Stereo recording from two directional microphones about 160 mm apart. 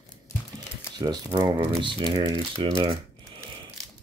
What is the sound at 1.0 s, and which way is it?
Speech, 25° right (ahead or behind).